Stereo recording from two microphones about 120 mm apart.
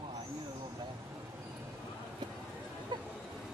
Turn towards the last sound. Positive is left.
turn(degrees=-40)  # may be behind; listen again after turning